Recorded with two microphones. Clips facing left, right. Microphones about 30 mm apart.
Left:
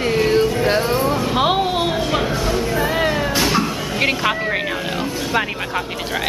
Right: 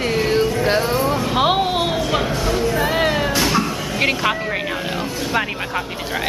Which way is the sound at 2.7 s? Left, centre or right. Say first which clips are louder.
Even; centre.